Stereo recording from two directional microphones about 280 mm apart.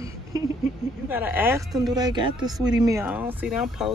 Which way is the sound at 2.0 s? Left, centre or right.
Centre.